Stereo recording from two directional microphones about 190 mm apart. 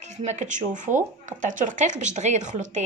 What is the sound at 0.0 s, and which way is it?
Speech, 35° right (ahead or behind).